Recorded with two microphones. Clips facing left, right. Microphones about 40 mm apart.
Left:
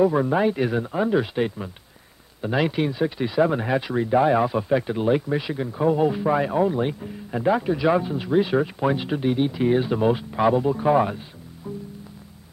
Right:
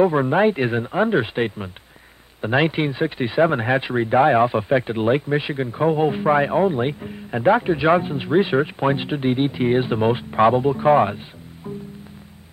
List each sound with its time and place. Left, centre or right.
0.0 s speech: right